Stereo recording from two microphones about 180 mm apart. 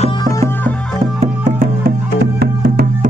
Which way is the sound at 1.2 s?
45° right (ahead or behind).